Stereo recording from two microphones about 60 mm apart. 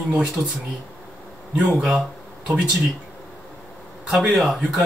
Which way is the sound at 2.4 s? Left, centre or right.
Centre.